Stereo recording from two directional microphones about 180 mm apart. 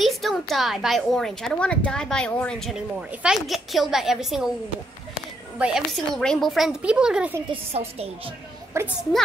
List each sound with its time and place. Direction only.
0.0 s a woman's voice: centre (ahead or behind)
5.6 s a woman's voice: centre (ahead or behind)
7.7 s a woman's voice: 35° right (ahead or behind)
8.8 s a child's voice: 15° right (ahead or behind)